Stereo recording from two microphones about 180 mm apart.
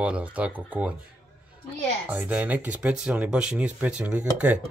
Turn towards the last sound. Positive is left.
turn(degrees=-5)  # may be behind; listen again after turning